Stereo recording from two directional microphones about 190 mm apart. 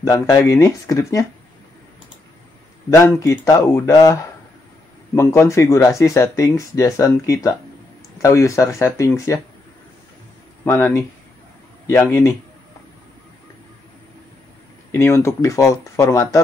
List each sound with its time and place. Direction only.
0.0 s speech: 15° left (ahead or behind)
2.9 s speech: 15° left (ahead or behind)
10.6 s speech: 10° left (ahead or behind)
14.9 s speech: 15° left (ahead or behind)